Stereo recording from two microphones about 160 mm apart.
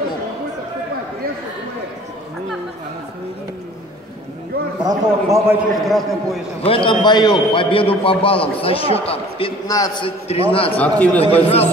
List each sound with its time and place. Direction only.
4.8 s a man's voice: 20° right (ahead or behind)
5.9 s a man's voice: centre (ahead or behind)
6.6 s a man's voice: 35° left (ahead or behind)
9.7 s a man's voice: 20° left (ahead or behind)
10.0 s a man's voice: 35° left (ahead or behind)
10.8 s a man's voice: 10° left (ahead or behind)
11.2 s a man's voice: 40° left (ahead or behind)